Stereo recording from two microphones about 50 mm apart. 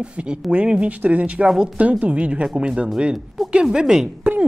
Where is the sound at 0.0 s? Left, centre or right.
Right.